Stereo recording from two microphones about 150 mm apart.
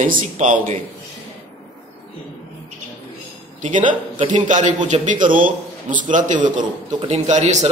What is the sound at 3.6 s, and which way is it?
A man's voice, 60° right (ahead or behind).